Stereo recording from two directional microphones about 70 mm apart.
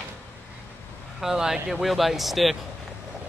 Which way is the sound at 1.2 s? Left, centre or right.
Centre.